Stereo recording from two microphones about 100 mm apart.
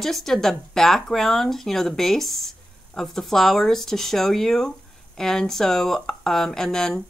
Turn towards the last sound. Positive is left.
turn(degrees=5)  # may be behind; listen again after turning